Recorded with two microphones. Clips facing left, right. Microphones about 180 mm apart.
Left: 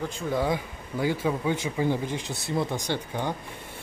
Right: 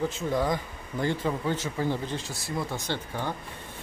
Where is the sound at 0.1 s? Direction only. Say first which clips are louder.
Left 1 dB; centre (ahead or behind).